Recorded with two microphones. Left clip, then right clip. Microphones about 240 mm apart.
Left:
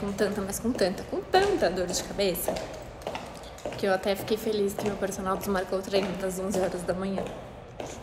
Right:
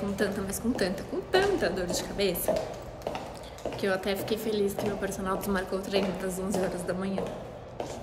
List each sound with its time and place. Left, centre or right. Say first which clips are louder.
0.1 s a woman's voice: left 5 dB; centre
3.7 s a woman's voice: left 3 dB; centre